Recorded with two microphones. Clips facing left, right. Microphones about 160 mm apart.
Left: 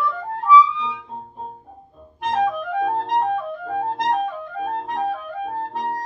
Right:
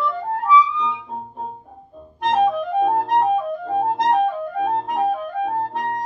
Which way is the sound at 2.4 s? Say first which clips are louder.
Right 4 dB; 20° right (ahead or behind).